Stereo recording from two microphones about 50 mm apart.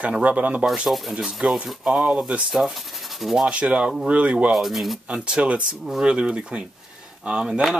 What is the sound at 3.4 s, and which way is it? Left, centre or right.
Speech, right.